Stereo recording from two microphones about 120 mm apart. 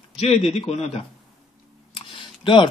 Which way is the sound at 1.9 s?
45° left (ahead or behind).